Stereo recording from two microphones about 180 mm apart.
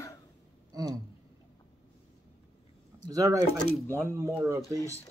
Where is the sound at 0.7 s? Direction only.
20° right (ahead or behind).